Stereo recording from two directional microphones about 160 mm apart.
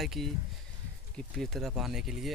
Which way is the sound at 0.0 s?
Centre (ahead or behind).